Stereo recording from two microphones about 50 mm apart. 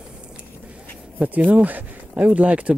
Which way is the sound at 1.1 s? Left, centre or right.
Right.